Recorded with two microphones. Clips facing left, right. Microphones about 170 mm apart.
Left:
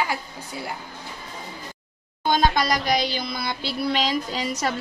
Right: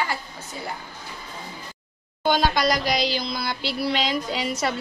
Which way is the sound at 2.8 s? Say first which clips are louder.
Even; 55° left (ahead or behind).